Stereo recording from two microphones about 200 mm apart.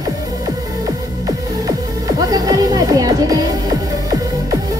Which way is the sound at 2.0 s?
20° right (ahead or behind).